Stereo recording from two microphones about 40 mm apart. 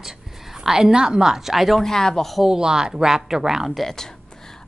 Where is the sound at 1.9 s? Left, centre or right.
Centre.